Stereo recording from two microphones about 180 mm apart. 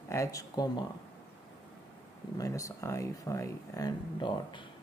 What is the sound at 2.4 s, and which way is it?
Speech, 20° left (ahead or behind).